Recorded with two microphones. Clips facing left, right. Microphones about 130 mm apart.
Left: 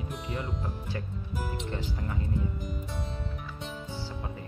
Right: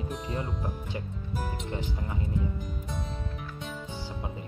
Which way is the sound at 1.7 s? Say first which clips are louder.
Even; 20° right (ahead or behind).